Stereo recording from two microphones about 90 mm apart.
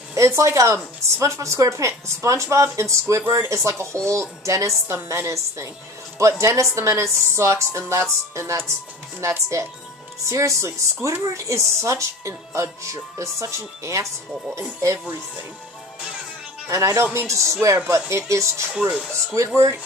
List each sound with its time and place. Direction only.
0.1 s speech: 35° right (ahead or behind)
16.6 s speech: 35° right (ahead or behind)
18.8 s speech: 15° right (ahead or behind)
19.3 s speech: 35° right (ahead or behind)